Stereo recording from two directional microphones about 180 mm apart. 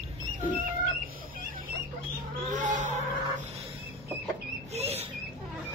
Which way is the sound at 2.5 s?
45° right (ahead or behind).